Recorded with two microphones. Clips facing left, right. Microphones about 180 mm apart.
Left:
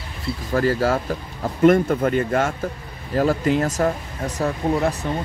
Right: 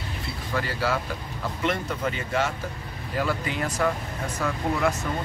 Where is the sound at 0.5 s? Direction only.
45° left (ahead or behind).